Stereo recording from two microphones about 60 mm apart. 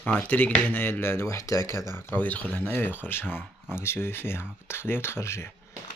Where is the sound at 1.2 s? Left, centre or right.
Left.